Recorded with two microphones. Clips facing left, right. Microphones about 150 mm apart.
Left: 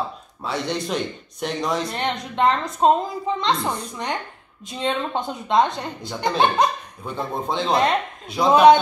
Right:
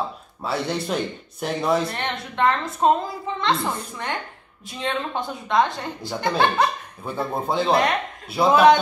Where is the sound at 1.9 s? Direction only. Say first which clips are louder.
Left 3 dB; 20° left (ahead or behind).